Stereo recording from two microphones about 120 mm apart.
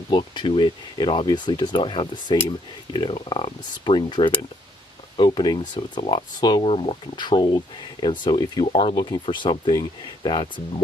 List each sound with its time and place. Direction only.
0.1 s speech: 40° left (ahead or behind)
6.6 s speech: 50° left (ahead or behind)